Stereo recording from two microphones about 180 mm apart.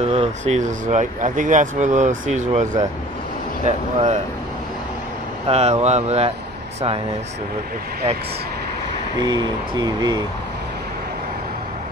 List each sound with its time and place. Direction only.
0.0 s speech: 40° right (ahead or behind)
5.5 s speech: 35° right (ahead or behind)
9.2 s speech: 25° right (ahead or behind)